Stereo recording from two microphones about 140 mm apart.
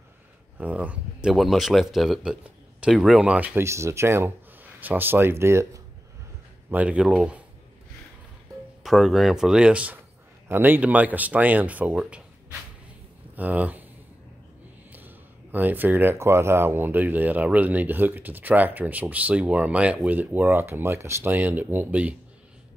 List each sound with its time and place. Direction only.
0.6 s speech: 10° right (ahead or behind)
8.8 s speech: centre (ahead or behind)
13.4 s speech: 10° right (ahead or behind)
14.9 s speech: 15° right (ahead or behind)